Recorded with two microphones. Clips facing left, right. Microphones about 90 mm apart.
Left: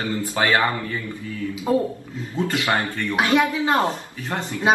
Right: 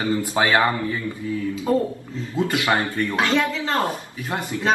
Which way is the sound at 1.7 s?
20° left (ahead or behind).